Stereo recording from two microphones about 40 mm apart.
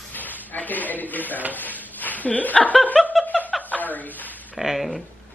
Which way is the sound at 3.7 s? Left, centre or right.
Left.